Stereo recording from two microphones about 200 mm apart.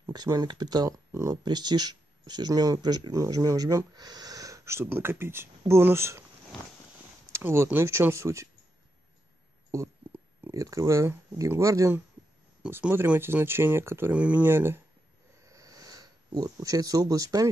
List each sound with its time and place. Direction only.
0.0 s speech: 20° right (ahead or behind)
7.3 s speech: 15° right (ahead or behind)
9.7 s speech: 15° right (ahead or behind)
15.4 s a sound: 15° right (ahead or behind)